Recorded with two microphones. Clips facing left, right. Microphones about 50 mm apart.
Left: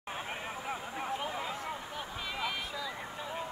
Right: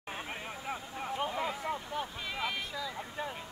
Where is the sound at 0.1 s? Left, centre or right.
Centre.